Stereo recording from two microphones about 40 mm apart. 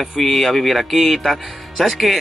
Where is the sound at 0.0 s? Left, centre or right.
Centre.